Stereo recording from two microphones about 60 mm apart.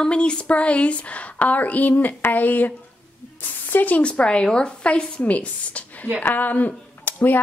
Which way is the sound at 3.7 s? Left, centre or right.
Left.